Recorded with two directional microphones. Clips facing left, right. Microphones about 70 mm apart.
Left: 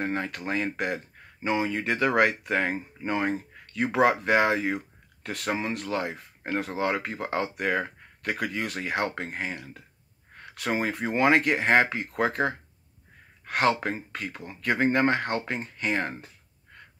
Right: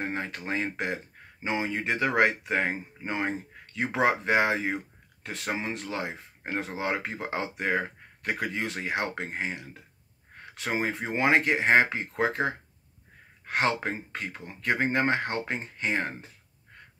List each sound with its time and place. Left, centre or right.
0.0 s speech: right